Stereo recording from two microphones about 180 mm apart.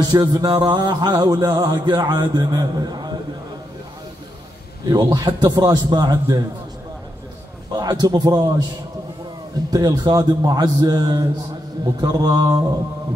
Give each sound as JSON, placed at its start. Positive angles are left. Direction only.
{"t": 0.0, "sound": "music", "side_deg": -25}
{"t": 4.8, "sound": "music", "side_deg": -20}
{"t": 7.7, "sound": "music", "side_deg": -20}
{"t": 9.7, "sound": "music", "side_deg": -20}